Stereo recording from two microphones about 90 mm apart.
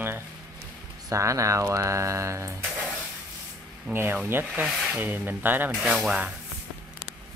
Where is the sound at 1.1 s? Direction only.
35° right (ahead or behind).